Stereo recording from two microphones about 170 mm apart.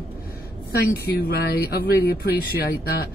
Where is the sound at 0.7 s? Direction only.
65° left (ahead or behind).